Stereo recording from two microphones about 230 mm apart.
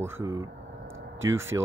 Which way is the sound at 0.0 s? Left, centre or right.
Centre.